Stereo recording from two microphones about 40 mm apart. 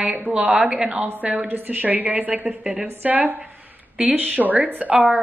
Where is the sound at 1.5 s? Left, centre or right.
Right.